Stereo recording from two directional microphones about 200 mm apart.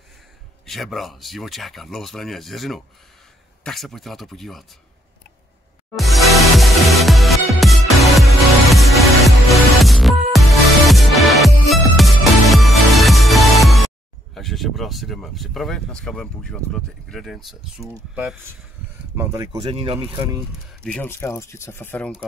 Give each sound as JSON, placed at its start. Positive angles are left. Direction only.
{"t": 0.7, "sound": "speech", "side_deg": 0}
{"t": 5.9, "sound": "music", "side_deg": 0}
{"t": 14.3, "sound": "speech", "side_deg": 0}
{"t": 19.6, "sound": "speech", "side_deg": -25}
{"t": 20.8, "sound": "speech", "side_deg": 5}